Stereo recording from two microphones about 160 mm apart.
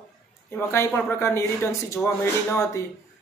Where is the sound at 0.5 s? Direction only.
15° left (ahead or behind).